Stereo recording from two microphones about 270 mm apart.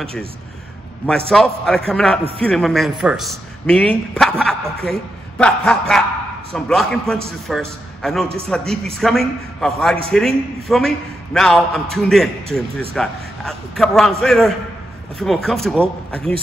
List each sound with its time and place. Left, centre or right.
1.3 s a man's voice: centre